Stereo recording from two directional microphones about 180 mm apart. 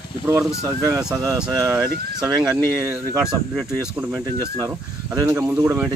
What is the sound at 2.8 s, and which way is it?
Speech, 5° right (ahead or behind).